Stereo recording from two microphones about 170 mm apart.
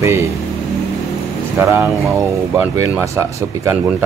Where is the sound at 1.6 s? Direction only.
15° right (ahead or behind).